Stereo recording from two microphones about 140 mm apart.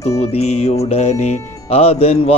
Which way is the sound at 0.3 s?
50° left (ahead or behind).